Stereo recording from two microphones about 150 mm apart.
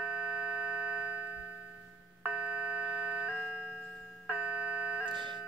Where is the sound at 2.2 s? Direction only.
5° right (ahead or behind).